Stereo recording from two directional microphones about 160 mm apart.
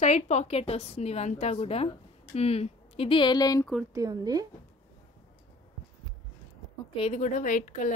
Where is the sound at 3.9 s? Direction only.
20° right (ahead or behind).